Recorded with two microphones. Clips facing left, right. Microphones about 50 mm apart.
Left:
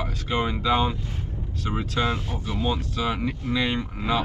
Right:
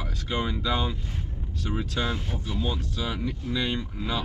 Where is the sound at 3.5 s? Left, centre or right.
Left.